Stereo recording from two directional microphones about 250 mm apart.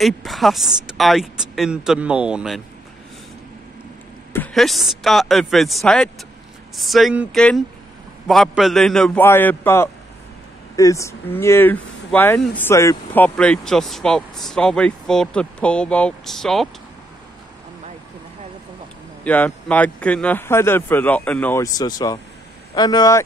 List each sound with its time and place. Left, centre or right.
0.0 s speech: centre
4.3 s speech: centre
19.2 s speech: centre